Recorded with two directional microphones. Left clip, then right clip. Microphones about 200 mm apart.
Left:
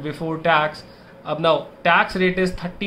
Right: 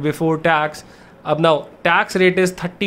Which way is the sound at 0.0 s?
50° right (ahead or behind).